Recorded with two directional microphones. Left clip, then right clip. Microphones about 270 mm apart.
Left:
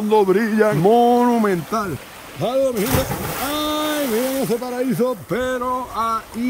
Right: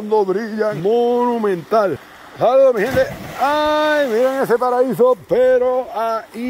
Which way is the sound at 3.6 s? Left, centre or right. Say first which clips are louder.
Right 4 dB; centre.